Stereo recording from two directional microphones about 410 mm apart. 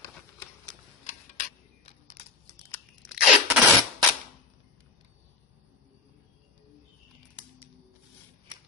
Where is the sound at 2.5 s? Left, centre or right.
Centre.